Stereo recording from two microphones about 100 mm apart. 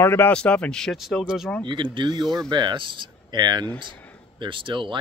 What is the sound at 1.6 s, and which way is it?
Speech, 50° right (ahead or behind).